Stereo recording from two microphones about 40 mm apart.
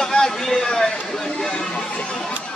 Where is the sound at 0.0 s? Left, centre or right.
Centre.